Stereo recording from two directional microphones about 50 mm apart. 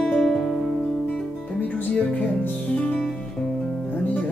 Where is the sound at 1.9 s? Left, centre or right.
Centre.